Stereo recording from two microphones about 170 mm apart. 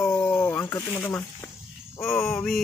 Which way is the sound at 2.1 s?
Centre (ahead or behind).